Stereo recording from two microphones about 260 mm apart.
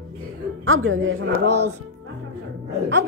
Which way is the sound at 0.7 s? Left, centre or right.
Right.